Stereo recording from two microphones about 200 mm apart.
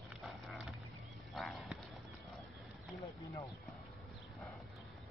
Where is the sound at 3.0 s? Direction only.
15° left (ahead or behind).